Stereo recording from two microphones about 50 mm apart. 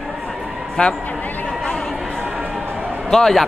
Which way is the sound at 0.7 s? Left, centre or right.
Centre.